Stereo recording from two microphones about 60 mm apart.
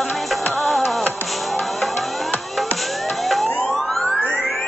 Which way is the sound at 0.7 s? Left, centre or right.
Left.